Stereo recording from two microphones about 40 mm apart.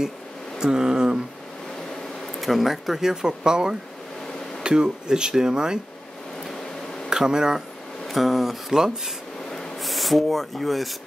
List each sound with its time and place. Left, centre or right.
0.6 s speech: centre
2.4 s speech: centre
7.1 s speech: centre
8.1 s speech: centre
9.8 s speech: centre